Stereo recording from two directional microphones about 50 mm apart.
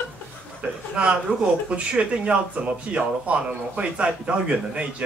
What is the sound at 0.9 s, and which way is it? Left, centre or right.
A man's voice, right.